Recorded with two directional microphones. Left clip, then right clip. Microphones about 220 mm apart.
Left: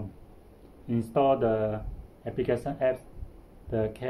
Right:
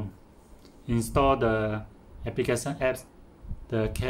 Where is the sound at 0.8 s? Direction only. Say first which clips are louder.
Even; 25° right (ahead or behind).